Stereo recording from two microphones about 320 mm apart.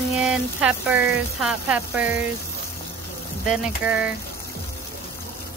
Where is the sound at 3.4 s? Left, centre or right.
Centre.